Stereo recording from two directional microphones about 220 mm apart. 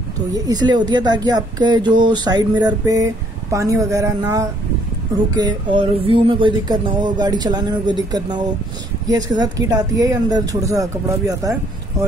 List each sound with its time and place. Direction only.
0.3 s speech: 20° right (ahead or behind)